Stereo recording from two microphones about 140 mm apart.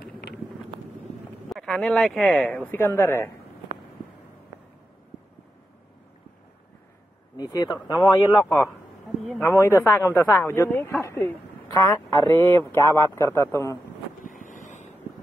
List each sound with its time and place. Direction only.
1.5 s speech: 5° left (ahead or behind)
7.3 s a man's voice: 30° left (ahead or behind)
14.2 s vehicle: 70° left (ahead or behind)